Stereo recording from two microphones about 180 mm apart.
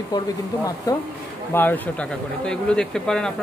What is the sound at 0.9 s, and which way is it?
Speech, 20° left (ahead or behind).